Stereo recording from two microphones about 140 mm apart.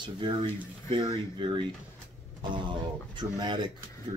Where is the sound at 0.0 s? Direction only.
35° right (ahead or behind).